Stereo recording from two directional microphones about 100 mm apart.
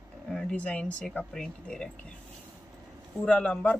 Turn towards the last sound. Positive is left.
turn(degrees=15)  # may be behind; listen again after turning